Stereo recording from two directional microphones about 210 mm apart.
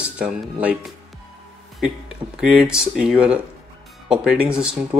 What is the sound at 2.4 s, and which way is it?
Speech, 5° right (ahead or behind).